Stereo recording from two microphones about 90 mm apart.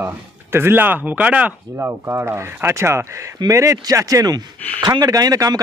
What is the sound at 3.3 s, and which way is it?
Speech, 40° right (ahead or behind).